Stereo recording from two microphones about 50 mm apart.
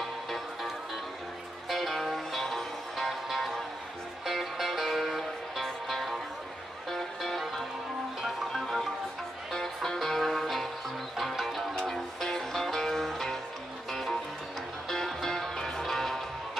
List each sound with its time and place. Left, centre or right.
1.7 s music: centre
14.9 s music: centre